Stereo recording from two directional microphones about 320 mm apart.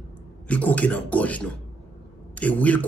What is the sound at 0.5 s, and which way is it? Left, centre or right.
A man's voice, centre.